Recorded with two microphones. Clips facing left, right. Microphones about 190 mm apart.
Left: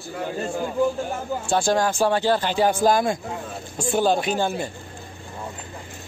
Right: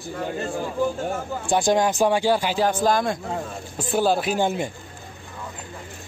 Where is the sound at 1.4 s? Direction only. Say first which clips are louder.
Right 1 dB; 15° right (ahead or behind).